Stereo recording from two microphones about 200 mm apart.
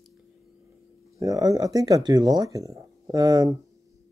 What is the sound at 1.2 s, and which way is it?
Speech, 15° right (ahead or behind).